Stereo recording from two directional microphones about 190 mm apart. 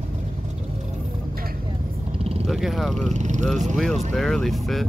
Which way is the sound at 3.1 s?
40° right (ahead or behind).